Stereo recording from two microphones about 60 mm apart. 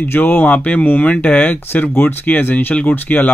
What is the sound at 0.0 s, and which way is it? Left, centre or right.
Speech, left.